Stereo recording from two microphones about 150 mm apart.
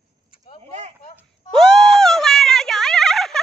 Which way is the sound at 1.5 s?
5° left (ahead or behind).